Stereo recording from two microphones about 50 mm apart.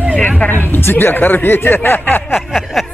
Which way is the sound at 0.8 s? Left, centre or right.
Left.